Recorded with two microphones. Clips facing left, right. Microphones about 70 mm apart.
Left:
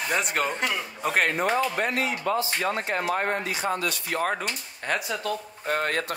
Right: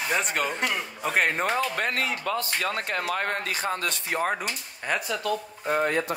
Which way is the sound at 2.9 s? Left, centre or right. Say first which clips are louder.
Left 2 dB; left.